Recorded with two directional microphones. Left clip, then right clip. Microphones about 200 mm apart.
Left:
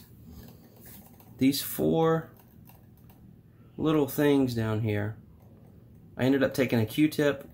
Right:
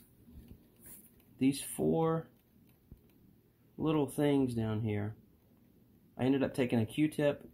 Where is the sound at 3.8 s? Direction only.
10° right (ahead or behind).